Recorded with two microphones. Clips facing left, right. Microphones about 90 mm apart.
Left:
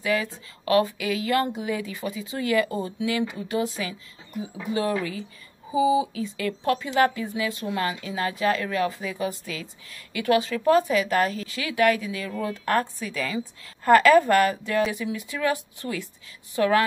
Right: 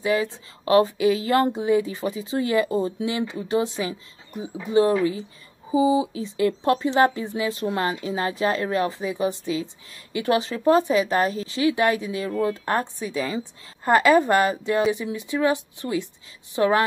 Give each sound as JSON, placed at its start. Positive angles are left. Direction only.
{"t": 0.0, "sound": "a woman's voice", "side_deg": -25}